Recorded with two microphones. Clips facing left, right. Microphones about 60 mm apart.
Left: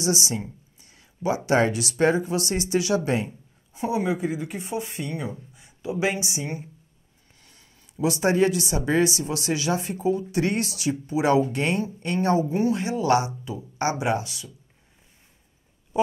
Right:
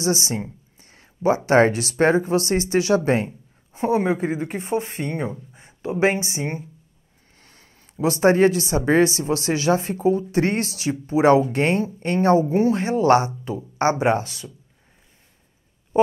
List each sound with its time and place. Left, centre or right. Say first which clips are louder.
0.0 s speech: right 3 dB; right